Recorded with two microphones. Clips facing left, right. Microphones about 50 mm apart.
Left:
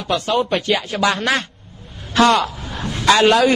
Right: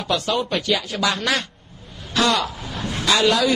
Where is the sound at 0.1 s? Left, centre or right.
Left.